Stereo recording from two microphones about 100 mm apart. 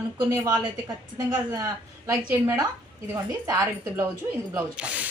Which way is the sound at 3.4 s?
35° right (ahead or behind).